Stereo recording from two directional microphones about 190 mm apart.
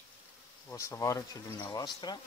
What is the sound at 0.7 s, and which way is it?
Speech, 15° left (ahead or behind).